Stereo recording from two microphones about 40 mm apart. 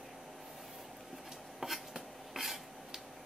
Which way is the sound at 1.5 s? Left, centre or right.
Centre.